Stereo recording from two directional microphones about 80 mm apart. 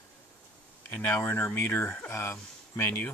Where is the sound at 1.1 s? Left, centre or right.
Left.